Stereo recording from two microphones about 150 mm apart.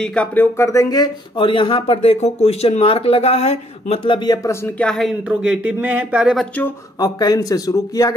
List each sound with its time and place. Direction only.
0.0 s speech: 5° left (ahead or behind); by 4.4 s 35° left (ahead or behind)
4.5 s speech: 5° left (ahead or behind)
7.0 s speech: 25° left (ahead or behind)